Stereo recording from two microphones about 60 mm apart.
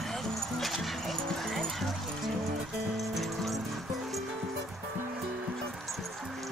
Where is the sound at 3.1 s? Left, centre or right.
Centre.